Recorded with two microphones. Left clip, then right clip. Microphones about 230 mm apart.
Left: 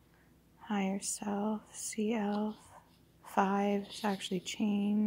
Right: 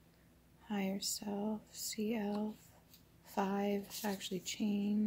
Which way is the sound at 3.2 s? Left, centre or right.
Centre.